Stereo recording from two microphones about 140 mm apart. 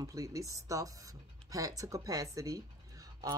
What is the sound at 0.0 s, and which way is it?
Speech, 25° right (ahead or behind).